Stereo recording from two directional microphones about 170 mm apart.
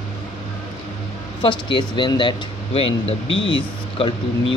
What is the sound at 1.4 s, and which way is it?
Speech, 30° left (ahead or behind).